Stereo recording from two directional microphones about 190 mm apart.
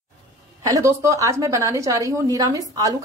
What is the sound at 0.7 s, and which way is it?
A woman's voice, 15° right (ahead or behind).